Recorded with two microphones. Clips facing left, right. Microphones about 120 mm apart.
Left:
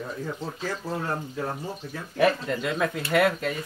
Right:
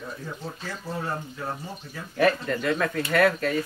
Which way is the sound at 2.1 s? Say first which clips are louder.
Even; 15° left (ahead or behind).